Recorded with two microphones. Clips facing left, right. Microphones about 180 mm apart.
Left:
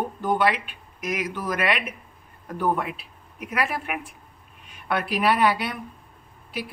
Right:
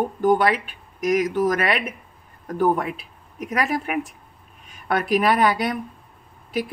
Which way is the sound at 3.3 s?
40° right (ahead or behind).